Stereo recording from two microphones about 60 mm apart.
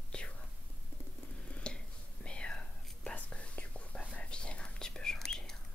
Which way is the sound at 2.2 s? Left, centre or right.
Centre.